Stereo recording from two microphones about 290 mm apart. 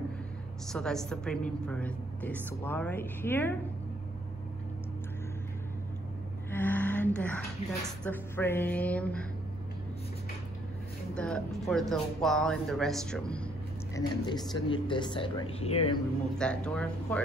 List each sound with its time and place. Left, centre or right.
0.7 s a woman's voice: centre
6.5 s music: centre
8.0 s a woman's voice: centre
11.1 s a woman's voice: centre
13.9 s speech: centre
16.3 s a woman's voice: centre